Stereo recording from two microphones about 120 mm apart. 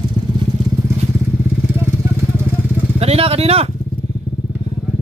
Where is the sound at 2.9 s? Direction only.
60° right (ahead or behind).